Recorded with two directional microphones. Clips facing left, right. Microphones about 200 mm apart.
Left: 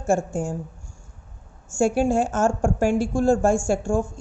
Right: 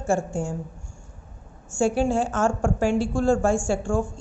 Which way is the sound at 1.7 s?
45° left (ahead or behind).